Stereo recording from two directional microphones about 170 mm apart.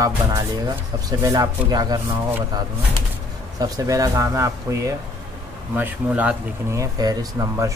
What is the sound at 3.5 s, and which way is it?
Speech, 20° right (ahead or behind).